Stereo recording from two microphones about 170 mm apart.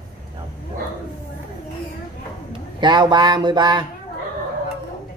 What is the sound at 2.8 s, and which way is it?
Speech, 25° right (ahead or behind).